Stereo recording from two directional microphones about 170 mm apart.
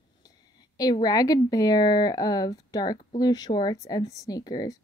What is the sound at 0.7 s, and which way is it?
Speech, 20° left (ahead or behind).